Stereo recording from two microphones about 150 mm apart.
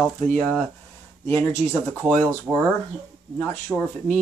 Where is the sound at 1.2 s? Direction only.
15° left (ahead or behind).